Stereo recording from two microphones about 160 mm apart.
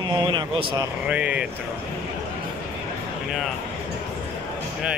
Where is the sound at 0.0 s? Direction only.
30° right (ahead or behind).